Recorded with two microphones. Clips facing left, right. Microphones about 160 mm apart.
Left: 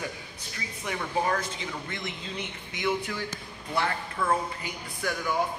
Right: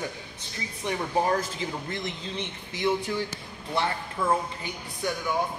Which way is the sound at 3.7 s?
20° right (ahead or behind).